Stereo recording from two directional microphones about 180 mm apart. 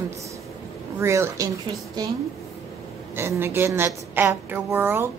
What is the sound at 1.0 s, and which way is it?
Speech, 15° right (ahead or behind).